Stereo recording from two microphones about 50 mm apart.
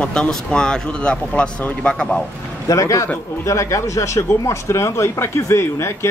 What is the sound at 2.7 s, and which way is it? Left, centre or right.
A man's voice, left.